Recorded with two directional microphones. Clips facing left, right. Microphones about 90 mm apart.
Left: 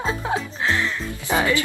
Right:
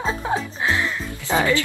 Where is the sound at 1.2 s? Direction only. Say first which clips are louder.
Right 1 dB; 15° left (ahead or behind).